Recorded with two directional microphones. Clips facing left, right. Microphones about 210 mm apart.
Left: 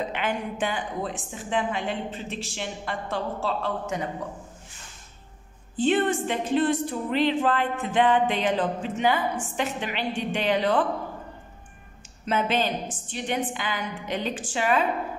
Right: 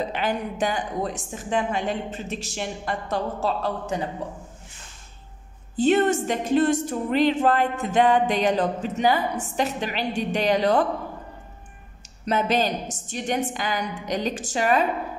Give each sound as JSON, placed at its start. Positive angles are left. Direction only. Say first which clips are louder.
{"t": 0.1, "sound": "speech", "louder": "right 2 dB", "side_deg": -35}
{"t": 5.8, "sound": "speech", "louder": "right 3 dB", "side_deg": -40}
{"t": 12.3, "sound": "speech", "louder": "right 2 dB", "side_deg": -40}